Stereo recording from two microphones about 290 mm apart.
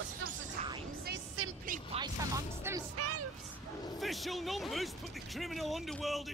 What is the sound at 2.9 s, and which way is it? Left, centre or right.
Speech, right.